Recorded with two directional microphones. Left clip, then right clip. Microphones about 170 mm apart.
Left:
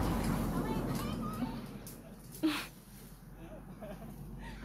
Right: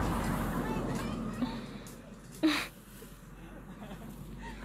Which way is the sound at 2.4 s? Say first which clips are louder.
Right 5 dB; 5° right (ahead or behind).